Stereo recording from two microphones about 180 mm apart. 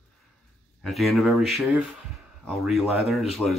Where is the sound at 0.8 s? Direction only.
Centre (ahead or behind).